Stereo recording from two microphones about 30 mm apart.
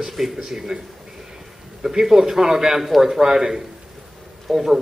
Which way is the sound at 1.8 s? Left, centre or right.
Centre.